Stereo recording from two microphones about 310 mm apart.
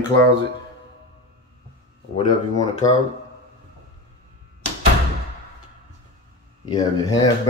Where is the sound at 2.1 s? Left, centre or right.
Left.